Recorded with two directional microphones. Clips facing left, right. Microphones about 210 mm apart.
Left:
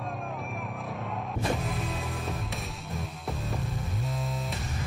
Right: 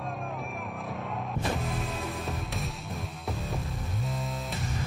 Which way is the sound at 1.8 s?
Centre (ahead or behind).